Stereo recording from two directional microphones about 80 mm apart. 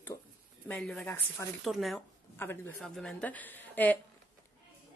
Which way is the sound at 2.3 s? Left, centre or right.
Left.